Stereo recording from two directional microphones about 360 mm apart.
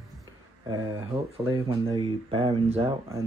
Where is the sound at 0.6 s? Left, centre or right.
Centre.